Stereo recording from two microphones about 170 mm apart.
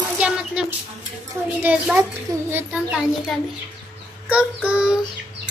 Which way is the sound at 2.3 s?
20° right (ahead or behind).